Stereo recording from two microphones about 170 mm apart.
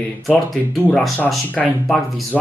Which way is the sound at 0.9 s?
Centre (ahead or behind).